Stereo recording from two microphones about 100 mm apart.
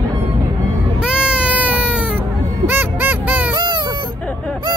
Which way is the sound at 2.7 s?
20° right (ahead or behind).